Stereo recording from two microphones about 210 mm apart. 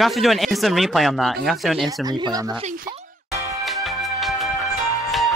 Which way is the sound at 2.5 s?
35° right (ahead or behind).